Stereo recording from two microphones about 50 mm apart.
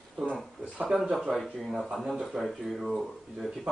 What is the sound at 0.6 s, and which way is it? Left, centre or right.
Speech, right.